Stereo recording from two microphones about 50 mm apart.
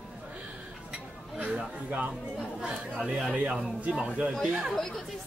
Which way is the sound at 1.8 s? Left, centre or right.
Right.